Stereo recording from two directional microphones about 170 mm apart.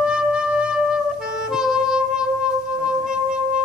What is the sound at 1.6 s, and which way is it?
Music, 5° right (ahead or behind).